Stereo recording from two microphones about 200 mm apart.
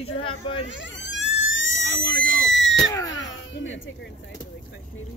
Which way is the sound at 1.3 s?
70° left (ahead or behind).